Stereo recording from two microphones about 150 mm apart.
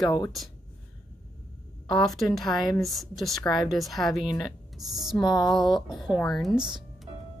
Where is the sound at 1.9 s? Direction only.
Centre (ahead or behind).